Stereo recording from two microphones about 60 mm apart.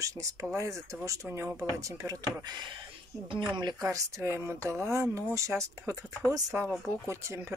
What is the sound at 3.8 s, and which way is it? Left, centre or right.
Speech, right.